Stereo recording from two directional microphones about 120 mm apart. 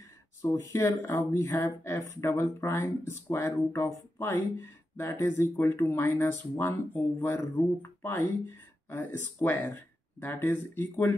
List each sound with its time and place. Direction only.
0.4 s speech: 20° left (ahead or behind)